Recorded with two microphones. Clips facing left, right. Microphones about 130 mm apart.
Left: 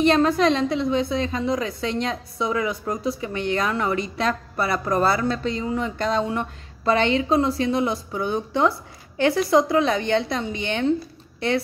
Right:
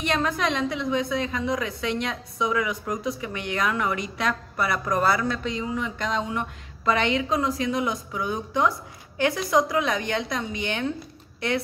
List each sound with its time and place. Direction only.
0.0 s a woman's voice: 30° left (ahead or behind)